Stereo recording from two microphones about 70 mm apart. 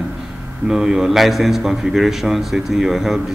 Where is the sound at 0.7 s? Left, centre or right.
Centre.